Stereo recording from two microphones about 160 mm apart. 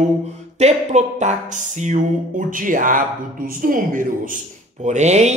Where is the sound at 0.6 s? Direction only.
45° right (ahead or behind).